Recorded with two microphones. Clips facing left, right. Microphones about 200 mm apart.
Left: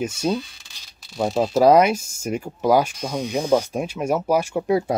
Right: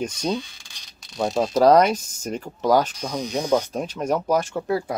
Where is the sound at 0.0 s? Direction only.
5° left (ahead or behind).